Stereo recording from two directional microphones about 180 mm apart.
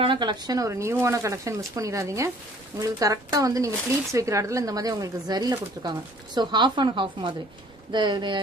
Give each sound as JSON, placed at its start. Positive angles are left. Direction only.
{"t": 0.0, "sound": "speech", "side_deg": -25}